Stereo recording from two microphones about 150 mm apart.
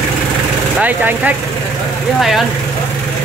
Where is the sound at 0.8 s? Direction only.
10° right (ahead or behind).